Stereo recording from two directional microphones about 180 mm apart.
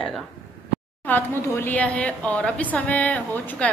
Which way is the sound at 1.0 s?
10° left (ahead or behind).